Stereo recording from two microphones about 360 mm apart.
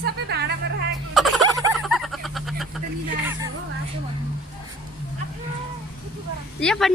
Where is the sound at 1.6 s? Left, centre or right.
Centre.